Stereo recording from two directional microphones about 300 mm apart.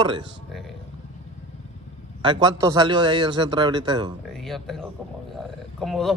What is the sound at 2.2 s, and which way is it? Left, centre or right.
A man's voice, centre.